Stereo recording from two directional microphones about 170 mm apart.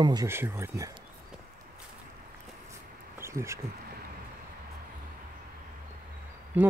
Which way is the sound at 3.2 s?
15° right (ahead or behind).